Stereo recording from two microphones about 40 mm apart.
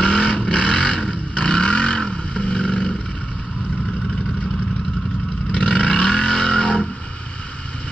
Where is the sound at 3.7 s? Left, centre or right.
Left.